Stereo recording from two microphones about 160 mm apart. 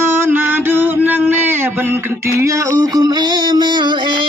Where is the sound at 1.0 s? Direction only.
10° right (ahead or behind).